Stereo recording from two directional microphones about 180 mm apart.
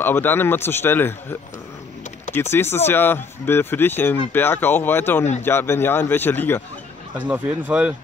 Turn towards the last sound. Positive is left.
turn(degrees=-10)  # may be behind; listen again after turning